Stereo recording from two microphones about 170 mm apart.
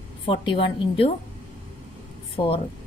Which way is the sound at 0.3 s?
30° left (ahead or behind).